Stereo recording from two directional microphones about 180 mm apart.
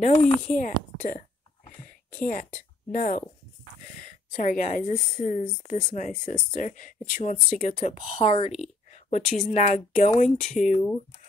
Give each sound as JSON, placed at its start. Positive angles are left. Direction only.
{"t": 0.0, "sound": "speech", "side_deg": 40}
{"t": 2.1, "sound": "a woman's voice", "side_deg": 50}